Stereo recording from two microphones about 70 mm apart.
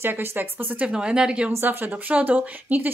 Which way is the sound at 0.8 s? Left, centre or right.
Centre.